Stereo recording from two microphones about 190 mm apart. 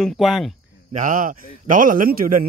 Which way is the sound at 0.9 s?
45° right (ahead or behind).